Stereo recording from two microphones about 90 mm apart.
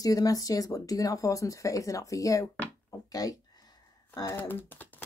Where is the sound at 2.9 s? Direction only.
40° left (ahead or behind).